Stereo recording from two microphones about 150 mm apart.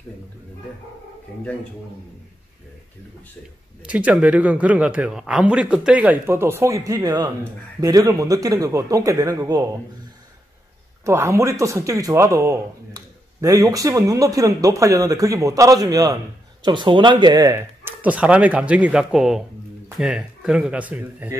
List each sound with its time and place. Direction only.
3.8 s speech: 10° right (ahead or behind); by 9.7 s 25° right (ahead or behind)
11.1 s speech: 20° right (ahead or behind)